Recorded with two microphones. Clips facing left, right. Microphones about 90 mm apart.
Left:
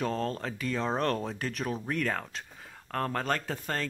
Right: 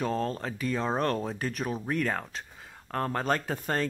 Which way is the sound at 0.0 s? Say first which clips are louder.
Right 1 dB; 5° right (ahead or behind).